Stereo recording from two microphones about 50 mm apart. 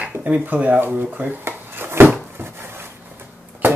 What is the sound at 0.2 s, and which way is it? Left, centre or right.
Speech, right.